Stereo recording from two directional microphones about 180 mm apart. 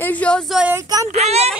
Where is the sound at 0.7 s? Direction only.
15° right (ahead or behind).